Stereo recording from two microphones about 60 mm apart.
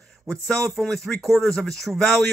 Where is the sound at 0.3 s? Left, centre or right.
Centre.